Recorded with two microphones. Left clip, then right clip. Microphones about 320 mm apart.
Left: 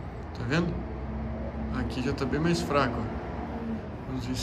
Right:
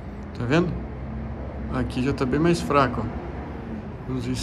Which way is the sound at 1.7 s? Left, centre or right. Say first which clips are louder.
Right 6 dB; centre.